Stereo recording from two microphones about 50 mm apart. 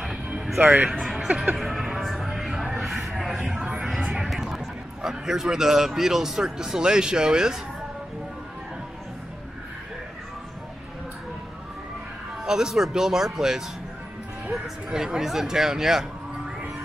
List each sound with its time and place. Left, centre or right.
0.6 s speech: right
0.9 s speech: centre
1.2 s a sound: right
1.6 s music: centre
4.2 s vehicle: centre
5.0 s a man's voice: centre
12.4 s a man's voice: centre